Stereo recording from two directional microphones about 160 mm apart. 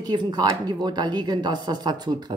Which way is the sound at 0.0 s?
25° right (ahead or behind).